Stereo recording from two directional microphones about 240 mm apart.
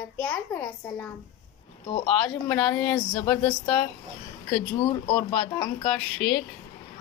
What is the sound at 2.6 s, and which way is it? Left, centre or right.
A child's voice, centre.